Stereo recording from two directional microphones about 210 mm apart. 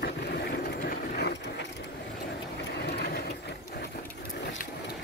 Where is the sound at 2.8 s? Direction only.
50° left (ahead or behind).